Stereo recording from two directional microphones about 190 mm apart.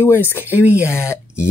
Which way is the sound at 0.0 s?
10° left (ahead or behind).